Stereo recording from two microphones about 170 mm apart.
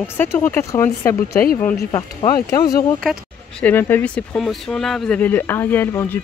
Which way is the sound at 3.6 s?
10° left (ahead or behind).